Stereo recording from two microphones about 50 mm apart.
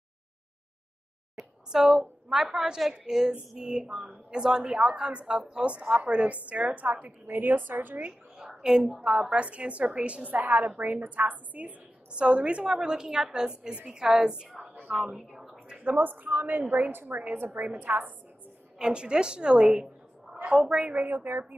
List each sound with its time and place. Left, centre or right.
1.3 s a woman's voice: centre; by 8.0 s right
8.5 s a woman's voice: centre; by 11.7 s right
12.2 s a woman's voice: right
14.9 s a sound: centre
15.8 s a woman's voice: right
18.8 s a woman's voice: centre
20.9 s a woman's voice: right